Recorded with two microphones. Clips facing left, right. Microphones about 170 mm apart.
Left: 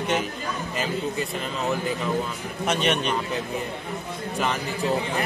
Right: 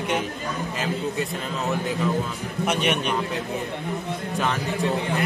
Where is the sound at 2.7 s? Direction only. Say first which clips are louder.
Left 1 dB; 10° right (ahead or behind).